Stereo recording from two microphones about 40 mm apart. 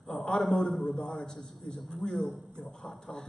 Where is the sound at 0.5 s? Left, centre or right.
Centre.